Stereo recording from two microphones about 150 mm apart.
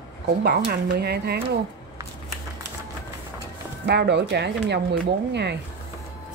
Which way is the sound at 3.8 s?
90° right.